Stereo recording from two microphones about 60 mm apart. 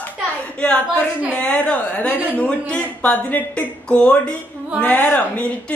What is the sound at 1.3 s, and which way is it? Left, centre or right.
Speech, left.